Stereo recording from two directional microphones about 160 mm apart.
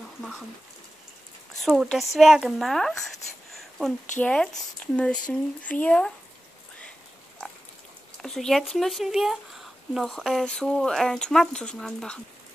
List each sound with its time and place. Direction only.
0.2 s speech: 5° right (ahead or behind)
1.6 s speech: centre (ahead or behind)
3.5 s a sound: centre (ahead or behind)
4.2 s speech: 5° left (ahead or behind)
8.2 s speech: centre (ahead or behind)